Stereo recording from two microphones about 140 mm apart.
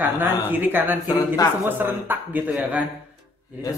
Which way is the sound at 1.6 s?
15° right (ahead or behind).